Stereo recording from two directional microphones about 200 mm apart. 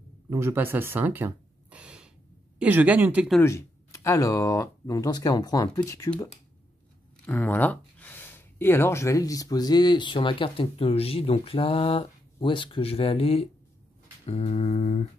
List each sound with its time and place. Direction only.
0.3 s speech: 15° right (ahead or behind)
3.3 s speech: 15° left (ahead or behind)
7.2 s speech: 10° left (ahead or behind); by 13.5 s 30° left (ahead or behind)
14.2 s a sound: 30° left (ahead or behind)